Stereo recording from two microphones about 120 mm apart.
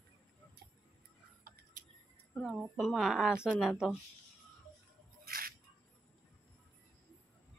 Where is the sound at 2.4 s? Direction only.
5° right (ahead or behind).